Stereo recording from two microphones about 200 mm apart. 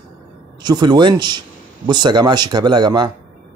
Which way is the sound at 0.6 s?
20° right (ahead or behind).